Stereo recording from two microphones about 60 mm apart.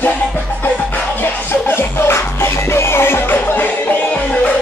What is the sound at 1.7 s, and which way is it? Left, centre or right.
Music, left.